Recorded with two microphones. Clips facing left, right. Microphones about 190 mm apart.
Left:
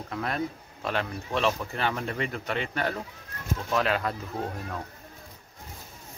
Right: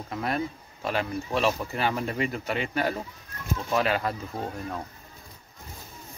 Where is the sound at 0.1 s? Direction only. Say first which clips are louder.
Right 2 dB; 5° right (ahead or behind).